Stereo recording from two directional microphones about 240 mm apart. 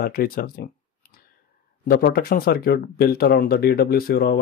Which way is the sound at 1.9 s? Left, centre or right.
Left.